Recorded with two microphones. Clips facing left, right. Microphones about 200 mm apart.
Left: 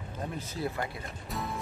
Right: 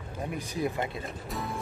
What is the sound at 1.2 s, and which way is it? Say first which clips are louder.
Music: left 1 dB; centre (ahead or behind).